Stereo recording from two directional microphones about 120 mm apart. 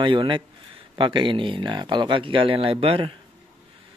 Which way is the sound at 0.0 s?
45° right (ahead or behind).